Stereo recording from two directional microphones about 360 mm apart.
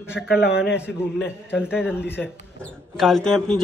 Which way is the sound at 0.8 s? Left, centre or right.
Centre.